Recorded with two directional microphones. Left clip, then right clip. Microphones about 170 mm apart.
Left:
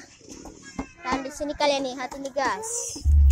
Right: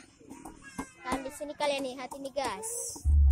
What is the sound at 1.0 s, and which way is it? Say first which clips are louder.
Music: left 7 dB; 5° left (ahead or behind).